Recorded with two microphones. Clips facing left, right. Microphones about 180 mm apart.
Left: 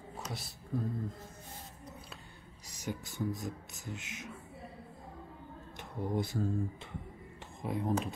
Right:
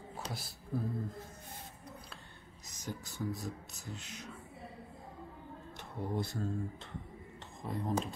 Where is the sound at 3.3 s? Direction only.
20° left (ahead or behind).